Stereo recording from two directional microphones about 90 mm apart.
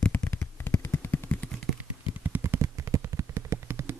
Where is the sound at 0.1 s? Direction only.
20° left (ahead or behind).